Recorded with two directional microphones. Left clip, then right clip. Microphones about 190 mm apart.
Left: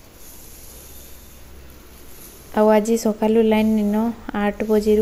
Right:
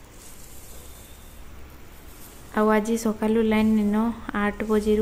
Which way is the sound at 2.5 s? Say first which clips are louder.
Left 6 dB; 10° left (ahead or behind).